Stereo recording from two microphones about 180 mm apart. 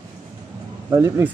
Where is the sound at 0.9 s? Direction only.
15° right (ahead or behind).